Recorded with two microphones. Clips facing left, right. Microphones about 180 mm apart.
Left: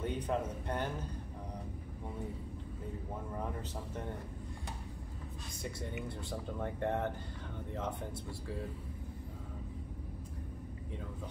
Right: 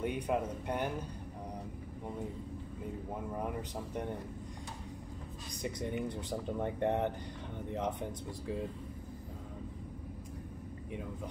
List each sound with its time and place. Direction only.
0.0 s speech: 10° right (ahead or behind)
5.6 s speech: 15° right (ahead or behind)